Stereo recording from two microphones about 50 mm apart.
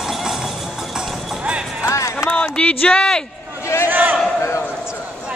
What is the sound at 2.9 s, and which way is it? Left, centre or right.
Speech, centre.